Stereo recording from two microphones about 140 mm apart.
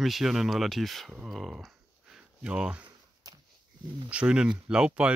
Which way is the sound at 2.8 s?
25° right (ahead or behind).